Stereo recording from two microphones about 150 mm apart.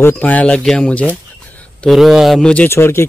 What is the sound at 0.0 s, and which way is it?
Speech, 10° left (ahead or behind).